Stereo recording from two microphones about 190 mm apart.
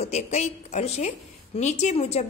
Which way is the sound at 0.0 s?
35° left (ahead or behind).